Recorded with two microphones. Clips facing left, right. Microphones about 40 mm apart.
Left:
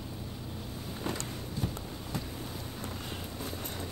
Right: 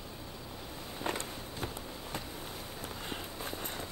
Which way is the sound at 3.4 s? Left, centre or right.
Right.